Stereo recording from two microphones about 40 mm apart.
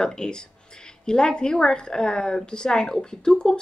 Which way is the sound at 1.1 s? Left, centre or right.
Centre.